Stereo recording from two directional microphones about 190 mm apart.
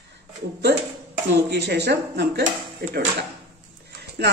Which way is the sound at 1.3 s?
60° right (ahead or behind).